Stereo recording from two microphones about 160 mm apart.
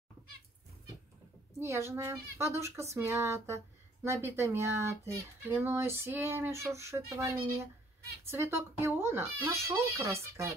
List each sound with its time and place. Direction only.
1.6 s speech: 15° right (ahead or behind)